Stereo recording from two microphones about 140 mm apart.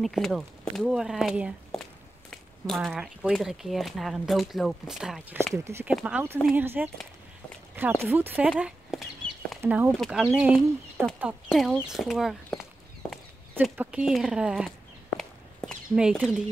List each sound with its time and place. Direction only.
0.0 s speech: centre (ahead or behind)
2.3 s a sound: 5° left (ahead or behind)
2.9 s speech: 5° right (ahead or behind)
5.5 s speech: 20° right (ahead or behind)
5.9 s speech: 5° right (ahead or behind)
8.5 s a sound: 5° right (ahead or behind)
9.6 s speech: 15° right (ahead or behind)
9.9 s speech: centre (ahead or behind)
13.6 s speech: 10° right (ahead or behind)
15.0 s walk: 5° left (ahead or behind)
15.9 s speech: 5° right (ahead or behind)